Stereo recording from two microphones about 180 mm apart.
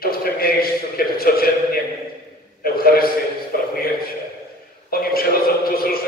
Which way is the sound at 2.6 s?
55° left (ahead or behind).